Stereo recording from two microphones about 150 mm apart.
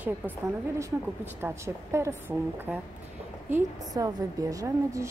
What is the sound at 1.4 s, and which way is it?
A woman's voice, 15° right (ahead or behind).